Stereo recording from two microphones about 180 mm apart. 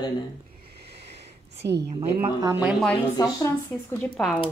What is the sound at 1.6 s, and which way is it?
Speech, 65° right (ahead or behind).